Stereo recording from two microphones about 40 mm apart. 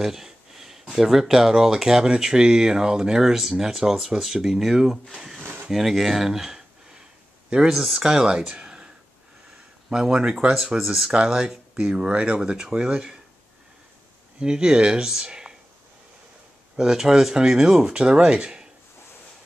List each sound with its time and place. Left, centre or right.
0.0 s a sound: centre
0.9 s speech: centre
7.4 s speech: right
7.7 s speech: centre
8.0 s speech: centre
14.4 s speech: right
16.7 s speech: centre